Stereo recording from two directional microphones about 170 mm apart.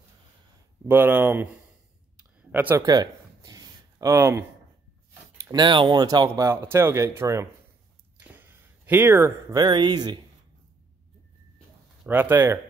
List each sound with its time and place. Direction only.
0.8 s speech: 15° right (ahead or behind)
2.1 s a sound: 10° right (ahead or behind)
5.5 s speech: 25° right (ahead or behind)
12.0 s speech: 10° right (ahead or behind)